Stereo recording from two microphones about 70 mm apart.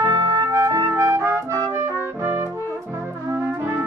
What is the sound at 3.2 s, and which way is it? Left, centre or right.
Music, right.